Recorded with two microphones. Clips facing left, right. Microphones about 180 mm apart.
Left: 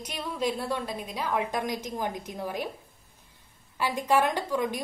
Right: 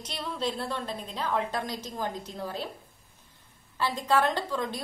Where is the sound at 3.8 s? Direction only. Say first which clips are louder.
Left 1 dB; 15° left (ahead or behind).